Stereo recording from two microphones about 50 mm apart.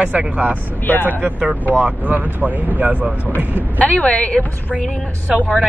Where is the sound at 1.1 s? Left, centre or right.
Right.